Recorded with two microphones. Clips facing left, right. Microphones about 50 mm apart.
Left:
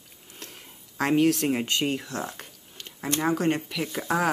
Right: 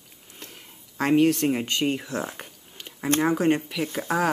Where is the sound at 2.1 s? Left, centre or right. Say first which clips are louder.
Right 3 dB; right.